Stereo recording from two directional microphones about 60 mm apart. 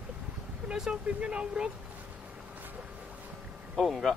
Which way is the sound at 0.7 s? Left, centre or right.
Centre.